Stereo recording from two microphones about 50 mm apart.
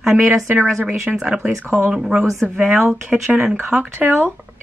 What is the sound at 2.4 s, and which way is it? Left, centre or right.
Speech, right.